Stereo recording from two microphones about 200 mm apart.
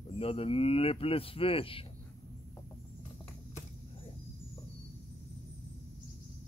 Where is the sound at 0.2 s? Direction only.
30° left (ahead or behind).